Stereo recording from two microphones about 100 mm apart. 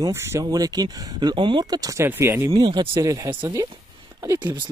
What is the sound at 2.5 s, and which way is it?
Speech, 50° right (ahead or behind).